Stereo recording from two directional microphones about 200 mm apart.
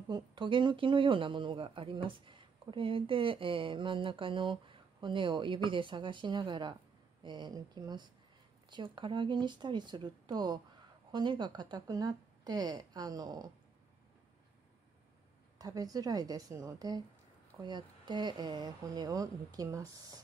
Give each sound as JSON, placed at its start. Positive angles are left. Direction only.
{"t": 0.1, "sound": "speech", "side_deg": -20}
{"t": 15.6, "sound": "a woman's voice", "side_deg": -20}